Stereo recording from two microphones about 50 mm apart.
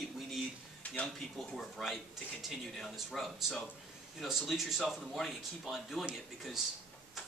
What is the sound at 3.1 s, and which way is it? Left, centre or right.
Speech, centre.